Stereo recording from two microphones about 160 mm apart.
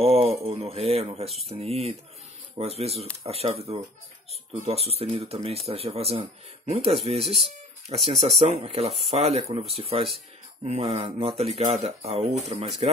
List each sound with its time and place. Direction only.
0.0 s speech: 40° right (ahead or behind)